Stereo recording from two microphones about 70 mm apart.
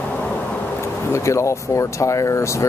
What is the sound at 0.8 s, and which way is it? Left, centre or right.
Speech, left.